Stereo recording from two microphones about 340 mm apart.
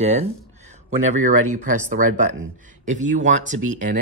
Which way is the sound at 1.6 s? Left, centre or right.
Right.